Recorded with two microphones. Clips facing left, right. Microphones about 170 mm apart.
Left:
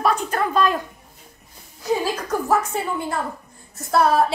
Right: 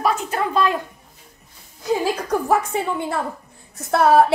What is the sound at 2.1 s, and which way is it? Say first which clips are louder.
A woman's voice: right 2 dB; 60° right (ahead or behind).